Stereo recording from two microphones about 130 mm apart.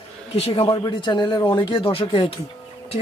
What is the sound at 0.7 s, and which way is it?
Speech, 35° left (ahead or behind).